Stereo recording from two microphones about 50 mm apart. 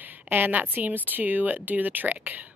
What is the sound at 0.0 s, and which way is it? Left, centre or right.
Speech, right.